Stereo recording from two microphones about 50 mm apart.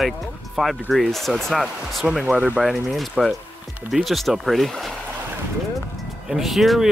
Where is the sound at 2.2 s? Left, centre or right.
Right.